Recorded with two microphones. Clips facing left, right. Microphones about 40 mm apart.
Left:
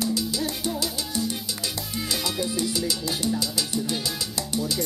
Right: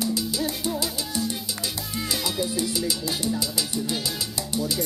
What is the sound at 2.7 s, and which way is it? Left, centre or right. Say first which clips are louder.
Salsa music: even; centre.